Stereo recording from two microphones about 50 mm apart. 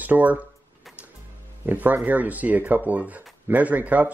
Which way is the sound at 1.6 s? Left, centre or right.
Right.